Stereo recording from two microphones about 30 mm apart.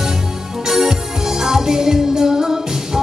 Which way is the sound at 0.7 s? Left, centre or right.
Centre.